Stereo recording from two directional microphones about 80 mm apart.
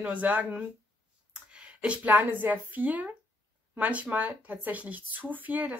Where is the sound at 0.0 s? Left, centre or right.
Centre.